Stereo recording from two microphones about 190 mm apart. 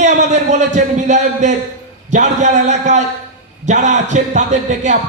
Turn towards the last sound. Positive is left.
turn(degrees=-40)  # may be behind; listen again after turning